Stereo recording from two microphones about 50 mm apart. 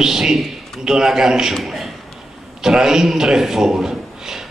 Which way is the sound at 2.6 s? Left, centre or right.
Centre.